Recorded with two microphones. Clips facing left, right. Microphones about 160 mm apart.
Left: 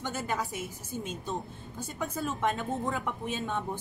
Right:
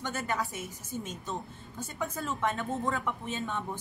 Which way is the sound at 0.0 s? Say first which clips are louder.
Even; 15° left (ahead or behind).